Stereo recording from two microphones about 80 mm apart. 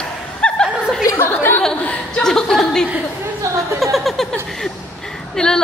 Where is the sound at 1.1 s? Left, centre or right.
Left.